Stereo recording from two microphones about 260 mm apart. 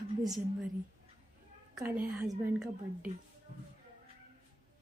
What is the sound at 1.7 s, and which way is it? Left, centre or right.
Speech, centre.